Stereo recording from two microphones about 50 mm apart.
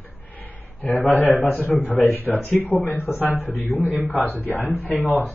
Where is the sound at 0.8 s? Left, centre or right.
Left.